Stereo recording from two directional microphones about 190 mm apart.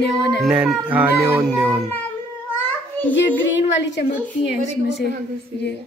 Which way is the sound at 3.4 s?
70° left (ahead or behind).